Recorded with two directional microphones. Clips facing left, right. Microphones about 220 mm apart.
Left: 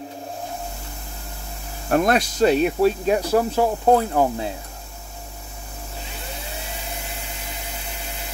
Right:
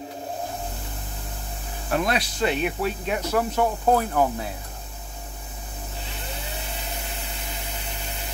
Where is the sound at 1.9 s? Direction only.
45° left (ahead or behind); by 4.5 s 25° left (ahead or behind).